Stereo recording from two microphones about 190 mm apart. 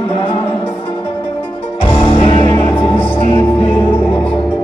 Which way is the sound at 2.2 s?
25° left (ahead or behind).